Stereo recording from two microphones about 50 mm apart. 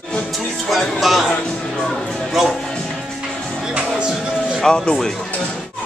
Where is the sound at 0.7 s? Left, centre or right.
Centre.